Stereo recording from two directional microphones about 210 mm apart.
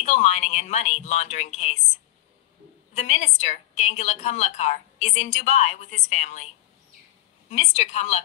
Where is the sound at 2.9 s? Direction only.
30° left (ahead or behind).